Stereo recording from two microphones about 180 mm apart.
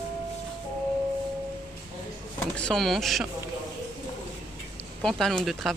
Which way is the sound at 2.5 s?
5° left (ahead or behind).